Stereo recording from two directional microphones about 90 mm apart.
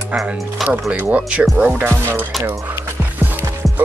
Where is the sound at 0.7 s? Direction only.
15° right (ahead or behind).